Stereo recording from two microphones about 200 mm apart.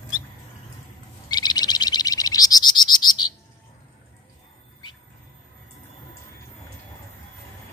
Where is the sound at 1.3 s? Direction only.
20° left (ahead or behind).